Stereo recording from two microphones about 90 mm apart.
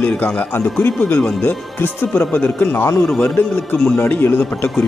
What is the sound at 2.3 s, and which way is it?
Speech, 20° left (ahead or behind).